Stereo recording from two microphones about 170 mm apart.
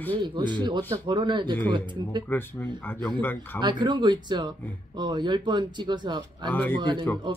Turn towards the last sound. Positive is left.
turn(degrees=-25)  # may be behind; listen again after turning